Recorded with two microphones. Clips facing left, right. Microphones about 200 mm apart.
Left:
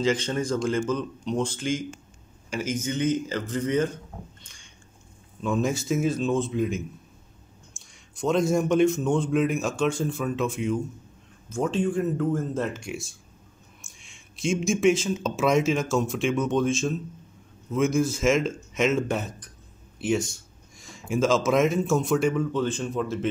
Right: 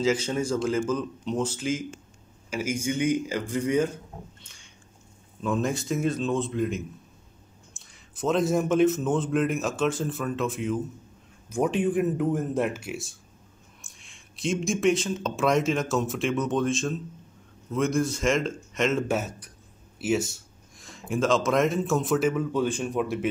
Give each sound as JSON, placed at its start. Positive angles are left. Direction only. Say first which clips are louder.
{"t": 0.0, "sound": "speech", "louder": "even", "side_deg": -5}
{"t": 5.4, "sound": "speech", "louder": "left 1 dB", "side_deg": 0}
{"t": 11.4, "sound": "speech", "louder": "right 1 dB", "side_deg": -15}